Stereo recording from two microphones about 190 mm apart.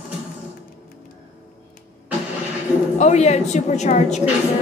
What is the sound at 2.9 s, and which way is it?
Speech, 40° left (ahead or behind).